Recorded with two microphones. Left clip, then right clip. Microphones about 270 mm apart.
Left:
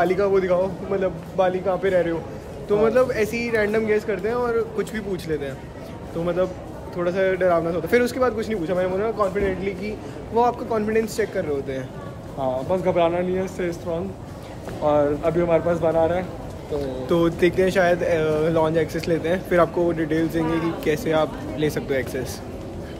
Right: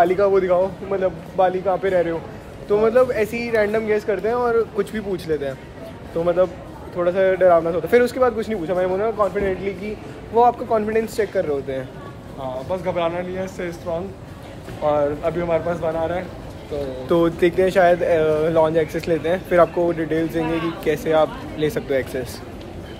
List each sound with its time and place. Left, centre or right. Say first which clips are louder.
0.0 s speech: right 3 dB; centre
12.4 s speech: left 3 dB; centre
14.9 s speech: even; centre
17.1 s speech: right 2 dB; centre